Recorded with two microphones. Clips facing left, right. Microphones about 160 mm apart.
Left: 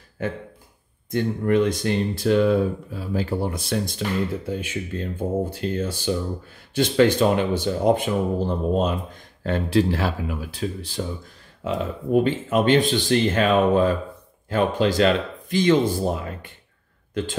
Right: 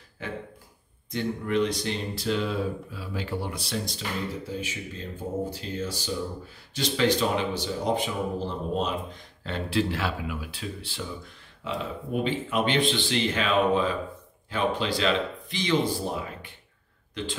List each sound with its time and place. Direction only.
0.2 s speech: 50° left (ahead or behind)